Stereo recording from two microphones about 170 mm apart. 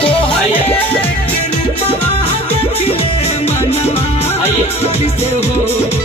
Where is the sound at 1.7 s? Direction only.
35° left (ahead or behind).